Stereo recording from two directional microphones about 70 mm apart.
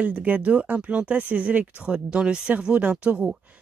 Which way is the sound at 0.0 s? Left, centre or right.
Right.